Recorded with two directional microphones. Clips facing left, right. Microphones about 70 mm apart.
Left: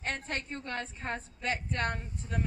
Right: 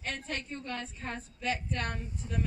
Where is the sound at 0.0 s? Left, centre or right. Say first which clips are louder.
Left 2 dB; left.